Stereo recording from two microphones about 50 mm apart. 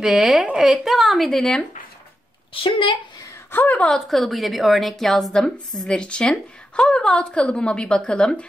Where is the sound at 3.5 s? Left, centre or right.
Left.